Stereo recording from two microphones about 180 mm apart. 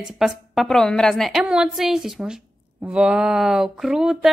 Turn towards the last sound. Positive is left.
turn(degrees=-5)  # may be behind; listen again after turning